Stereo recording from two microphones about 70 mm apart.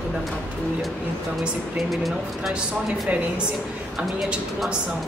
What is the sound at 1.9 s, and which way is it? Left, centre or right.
Speech, centre.